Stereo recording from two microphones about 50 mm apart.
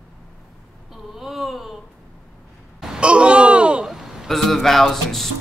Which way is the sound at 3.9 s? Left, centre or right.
Centre.